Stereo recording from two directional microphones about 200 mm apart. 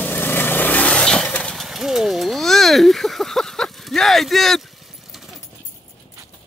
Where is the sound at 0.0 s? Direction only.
10° left (ahead or behind).